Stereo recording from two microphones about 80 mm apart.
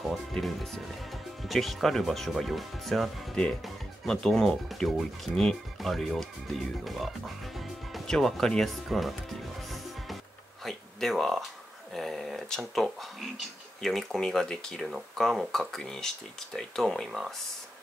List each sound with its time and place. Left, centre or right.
0.0 s speech: centre
10.6 s a sound: centre
11.9 s speech: centre